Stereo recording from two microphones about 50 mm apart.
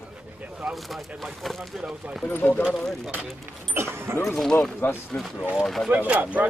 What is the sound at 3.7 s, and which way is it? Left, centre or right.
Speech, right.